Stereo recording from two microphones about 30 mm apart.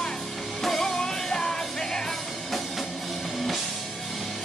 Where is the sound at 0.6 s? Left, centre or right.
Centre.